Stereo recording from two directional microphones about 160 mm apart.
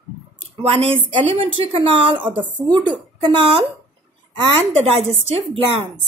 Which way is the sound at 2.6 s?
30° right (ahead or behind).